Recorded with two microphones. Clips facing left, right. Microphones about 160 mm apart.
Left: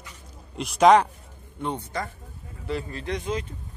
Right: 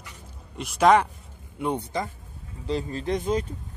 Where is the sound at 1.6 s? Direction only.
10° right (ahead or behind).